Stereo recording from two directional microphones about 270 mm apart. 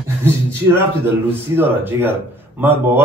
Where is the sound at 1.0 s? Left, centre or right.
Centre.